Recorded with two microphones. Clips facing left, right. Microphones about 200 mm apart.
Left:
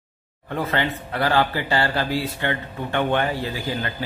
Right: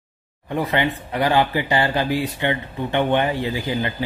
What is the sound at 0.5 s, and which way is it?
Speech, 15° right (ahead or behind).